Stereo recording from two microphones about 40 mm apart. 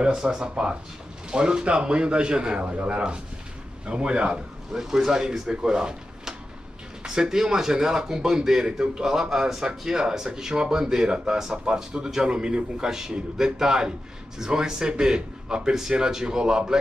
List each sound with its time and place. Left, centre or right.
0.0 s a man's voice: right
3.8 s a man's voice: right
4.7 s a man's voice: centre